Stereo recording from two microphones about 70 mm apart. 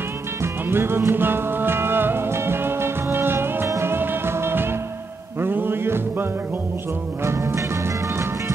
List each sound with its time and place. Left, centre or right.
0.4 s music: right
7.2 s music: right